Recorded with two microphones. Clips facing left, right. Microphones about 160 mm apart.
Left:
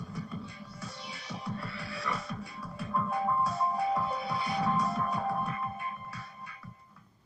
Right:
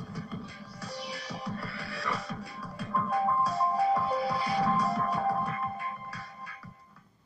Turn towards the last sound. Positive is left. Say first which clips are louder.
# right 2 dB
turn(degrees=20)  # may be behind; listen again after turning